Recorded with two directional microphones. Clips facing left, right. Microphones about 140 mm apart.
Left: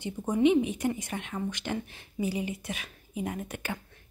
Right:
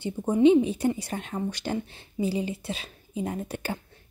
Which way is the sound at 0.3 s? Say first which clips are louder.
Right 5 dB; 30° right (ahead or behind).